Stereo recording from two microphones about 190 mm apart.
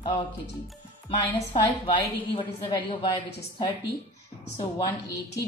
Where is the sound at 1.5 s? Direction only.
25° left (ahead or behind).